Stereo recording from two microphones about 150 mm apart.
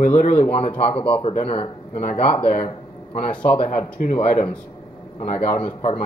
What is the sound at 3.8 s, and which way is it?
Speech, 50° left (ahead or behind).